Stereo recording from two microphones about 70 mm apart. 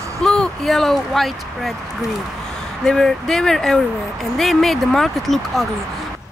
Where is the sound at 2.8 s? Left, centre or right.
Centre.